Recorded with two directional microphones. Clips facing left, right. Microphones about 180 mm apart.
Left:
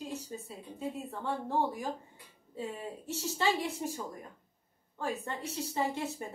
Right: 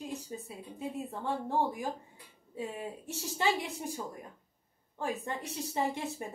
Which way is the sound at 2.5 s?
15° right (ahead or behind).